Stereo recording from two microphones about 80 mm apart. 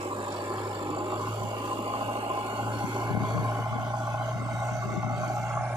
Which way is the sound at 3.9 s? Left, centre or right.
Right.